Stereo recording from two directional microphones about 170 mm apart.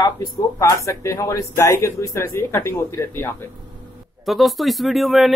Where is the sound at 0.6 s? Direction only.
15° left (ahead or behind).